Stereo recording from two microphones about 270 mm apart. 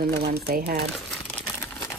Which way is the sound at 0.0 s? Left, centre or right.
Right.